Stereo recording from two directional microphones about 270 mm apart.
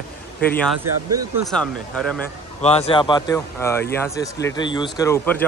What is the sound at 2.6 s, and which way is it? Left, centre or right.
Speech, left.